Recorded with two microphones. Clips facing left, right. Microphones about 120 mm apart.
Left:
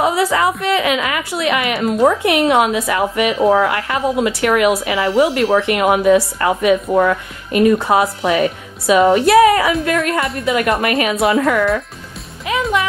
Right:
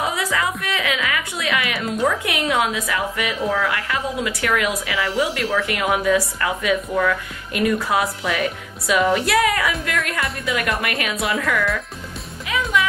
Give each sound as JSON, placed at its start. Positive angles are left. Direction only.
{"t": 0.0, "sound": "music", "side_deg": 30}
{"t": 0.7, "sound": "a sound", "side_deg": 30}
{"t": 1.4, "sound": "a woman's voice", "side_deg": 30}
{"t": 12.4, "sound": "music", "side_deg": 30}